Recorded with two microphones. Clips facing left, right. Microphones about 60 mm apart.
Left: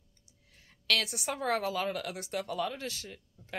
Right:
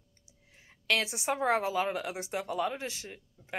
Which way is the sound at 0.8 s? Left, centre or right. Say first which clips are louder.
Right 2 dB; right.